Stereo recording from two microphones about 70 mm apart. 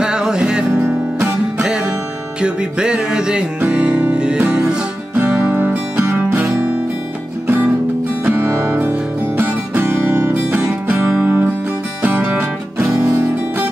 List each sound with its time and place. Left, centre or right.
0.0 s music: centre
2.4 s music: centre
8.5 s music: right
10.6 s music: centre
11.2 s music: right